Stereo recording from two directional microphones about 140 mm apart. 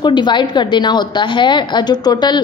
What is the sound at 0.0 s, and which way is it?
A woman's voice, 35° left (ahead or behind).